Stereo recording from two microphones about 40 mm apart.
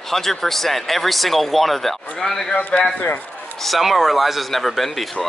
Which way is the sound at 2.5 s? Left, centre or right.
Left.